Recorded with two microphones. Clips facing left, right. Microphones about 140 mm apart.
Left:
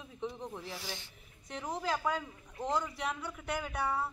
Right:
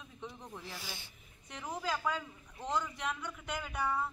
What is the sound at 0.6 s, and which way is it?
Speech, centre (ahead or behind).